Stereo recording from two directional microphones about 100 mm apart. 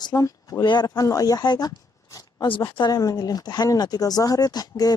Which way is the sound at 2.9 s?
40° left (ahead or behind).